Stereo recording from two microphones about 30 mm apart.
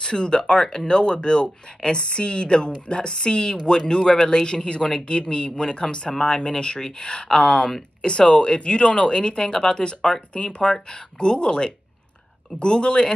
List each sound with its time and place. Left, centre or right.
0.0 s speech: left